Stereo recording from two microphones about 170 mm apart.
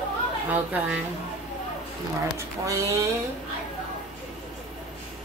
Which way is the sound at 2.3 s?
20° right (ahead or behind).